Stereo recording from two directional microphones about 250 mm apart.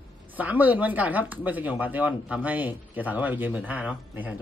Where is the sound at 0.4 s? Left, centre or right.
Centre.